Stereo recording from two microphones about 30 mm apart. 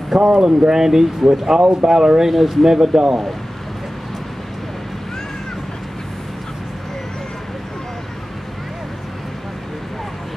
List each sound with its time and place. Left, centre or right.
0.3 s speech: right; by 1.6 s centre
1.6 s speech: right
1.9 s speech: centre
2.3 s speech: centre
2.6 s speech: centre